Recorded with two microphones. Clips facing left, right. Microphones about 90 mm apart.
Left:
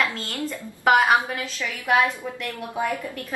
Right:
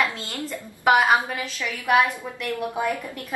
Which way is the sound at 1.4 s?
15° right (ahead or behind).